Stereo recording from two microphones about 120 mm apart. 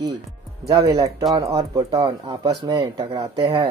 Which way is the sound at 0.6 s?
35° right (ahead or behind).